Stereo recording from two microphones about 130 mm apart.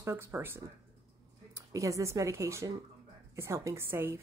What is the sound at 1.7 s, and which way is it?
A woman's voice, 25° right (ahead or behind).